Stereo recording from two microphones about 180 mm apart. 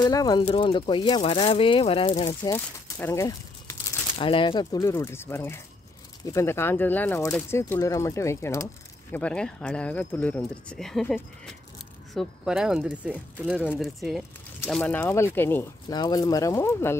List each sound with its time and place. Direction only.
0.0 s speech: 20° left (ahead or behind)
4.2 s speech: 30° left (ahead or behind)
4.7 s speech: 15° left (ahead or behind)
15.9 s speech: 25° left (ahead or behind)